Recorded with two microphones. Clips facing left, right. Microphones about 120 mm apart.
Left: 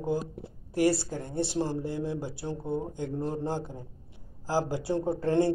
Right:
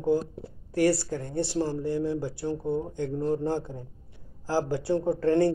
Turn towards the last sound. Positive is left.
turn(degrees=15)  # may be behind; listen again after turning